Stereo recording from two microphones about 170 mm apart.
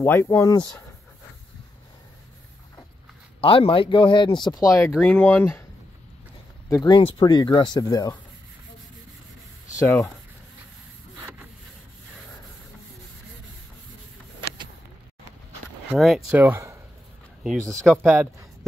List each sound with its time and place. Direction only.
0.0 s speech: 15° left (ahead or behind)
3.3 s speech: 35° left (ahead or behind); by 5.6 s 10° left (ahead or behind)
6.7 s speech: 25° left (ahead or behind)
9.8 s speech: 15° left (ahead or behind)
15.9 s speech: centre (ahead or behind)
16.3 s speech: 15° right (ahead or behind)
17.4 s speech: centre (ahead or behind)